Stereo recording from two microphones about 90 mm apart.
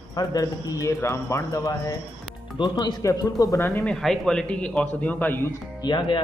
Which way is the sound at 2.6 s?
55° left (ahead or behind).